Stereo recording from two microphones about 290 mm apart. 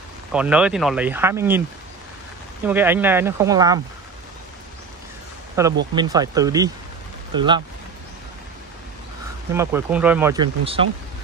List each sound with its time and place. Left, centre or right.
0.3 s speech: centre
2.6 s speech: centre
5.6 s speech: centre
9.5 s speech: centre